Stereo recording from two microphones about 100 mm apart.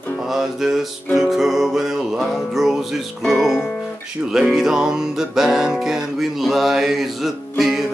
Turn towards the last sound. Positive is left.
turn(degrees=0)  # may be behind; listen again after turning